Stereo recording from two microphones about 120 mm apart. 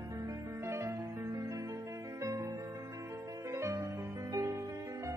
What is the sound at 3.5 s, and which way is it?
Music, 25° right (ahead or behind).